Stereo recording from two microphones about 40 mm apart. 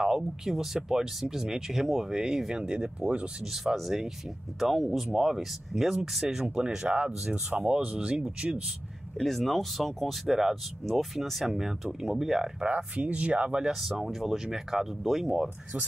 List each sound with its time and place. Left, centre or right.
0.0 s speech: centre
3.6 s speech: centre
6.4 s speech: centre
9.2 s speech: centre
10.9 s speech: centre
12.6 s speech: right
13.7 s speech: centre